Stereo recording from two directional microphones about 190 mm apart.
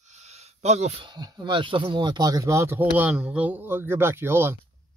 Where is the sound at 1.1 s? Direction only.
20° right (ahead or behind).